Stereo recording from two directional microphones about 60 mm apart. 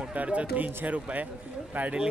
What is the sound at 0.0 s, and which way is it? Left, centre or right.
A man's voice, right.